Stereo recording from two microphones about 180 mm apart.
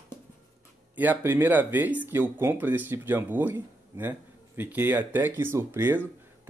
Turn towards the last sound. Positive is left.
turn(degrees=-10)  # may be behind; listen again after turning